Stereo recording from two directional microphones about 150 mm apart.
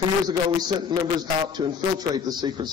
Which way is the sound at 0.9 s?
30° right (ahead or behind).